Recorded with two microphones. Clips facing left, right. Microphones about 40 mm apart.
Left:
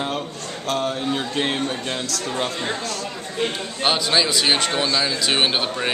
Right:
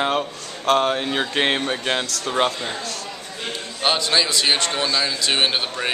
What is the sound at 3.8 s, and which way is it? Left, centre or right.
Speech, centre.